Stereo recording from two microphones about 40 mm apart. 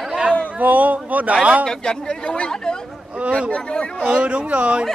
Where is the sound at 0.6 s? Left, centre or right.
Right.